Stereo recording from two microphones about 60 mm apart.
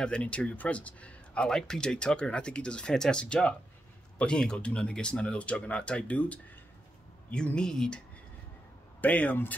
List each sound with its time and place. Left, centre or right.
0.0 s speech: centre
7.5 s speech: centre
9.0 s speech: left